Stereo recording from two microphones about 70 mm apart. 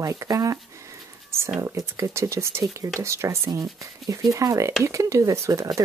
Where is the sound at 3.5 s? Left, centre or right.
Right.